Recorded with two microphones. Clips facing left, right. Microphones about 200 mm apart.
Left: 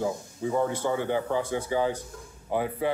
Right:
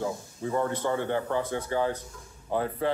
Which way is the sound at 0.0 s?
10° left (ahead or behind).